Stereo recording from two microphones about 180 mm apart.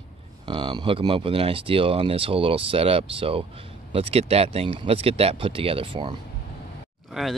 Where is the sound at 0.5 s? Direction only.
25° right (ahead or behind).